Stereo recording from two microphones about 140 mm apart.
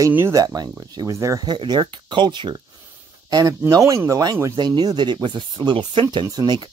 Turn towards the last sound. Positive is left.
turn(degrees=-30)  # may be behind; listen again after turning